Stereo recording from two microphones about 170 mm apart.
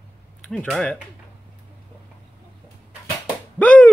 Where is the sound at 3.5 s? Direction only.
10° left (ahead or behind).